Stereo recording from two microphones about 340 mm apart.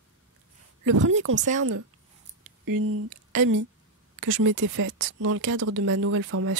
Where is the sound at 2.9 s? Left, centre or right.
Right.